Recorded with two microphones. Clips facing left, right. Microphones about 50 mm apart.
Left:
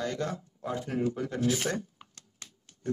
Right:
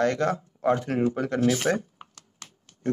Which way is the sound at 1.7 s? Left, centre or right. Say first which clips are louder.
Right 7 dB; right.